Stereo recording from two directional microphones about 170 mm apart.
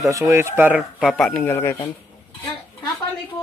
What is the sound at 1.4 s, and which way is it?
Speech, 10° left (ahead or behind).